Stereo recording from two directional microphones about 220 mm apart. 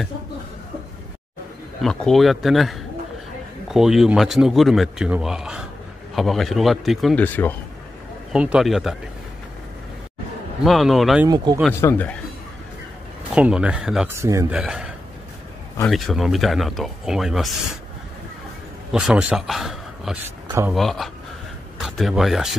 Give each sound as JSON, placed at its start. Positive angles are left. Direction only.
{"t": 1.8, "sound": "a man's voice", "side_deg": 0}
{"t": 8.3, "sound": "a man's voice", "side_deg": -5}
{"t": 10.6, "sound": "a man's voice", "side_deg": 0}
{"t": 11.2, "sound": "speech", "side_deg": -20}
{"t": 11.8, "sound": "speech", "side_deg": 10}
{"t": 13.3, "sound": "a man's voice", "side_deg": -5}
{"t": 15.9, "sound": "a man's voice", "side_deg": 0}
{"t": 18.9, "sound": "a man's voice", "side_deg": -5}